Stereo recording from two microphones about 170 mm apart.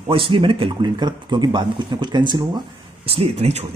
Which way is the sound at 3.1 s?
35° right (ahead or behind).